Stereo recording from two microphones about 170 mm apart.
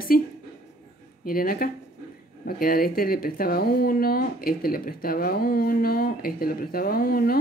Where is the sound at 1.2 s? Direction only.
60° left (ahead or behind).